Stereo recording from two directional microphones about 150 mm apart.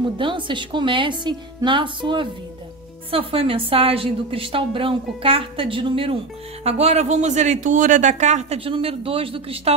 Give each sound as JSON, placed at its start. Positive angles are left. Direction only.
{"t": 0.2, "sound": "a woman's voice", "side_deg": -35}